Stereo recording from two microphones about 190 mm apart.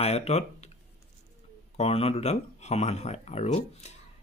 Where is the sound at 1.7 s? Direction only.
30° left (ahead or behind).